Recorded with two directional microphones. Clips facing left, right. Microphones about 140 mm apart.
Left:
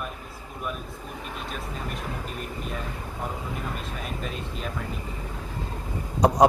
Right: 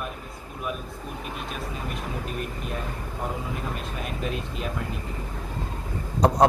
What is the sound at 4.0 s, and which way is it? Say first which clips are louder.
Speech: right 3 dB; 5° right (ahead or behind).